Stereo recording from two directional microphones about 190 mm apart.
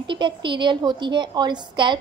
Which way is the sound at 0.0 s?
25° right (ahead or behind).